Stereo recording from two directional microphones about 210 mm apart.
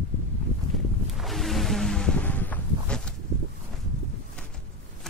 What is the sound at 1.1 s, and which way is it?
Music, centre (ahead or behind).